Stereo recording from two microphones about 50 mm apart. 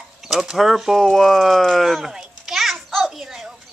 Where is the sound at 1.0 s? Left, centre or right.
Centre.